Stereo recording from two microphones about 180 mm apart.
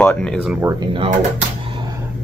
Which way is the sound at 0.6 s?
25° right (ahead or behind).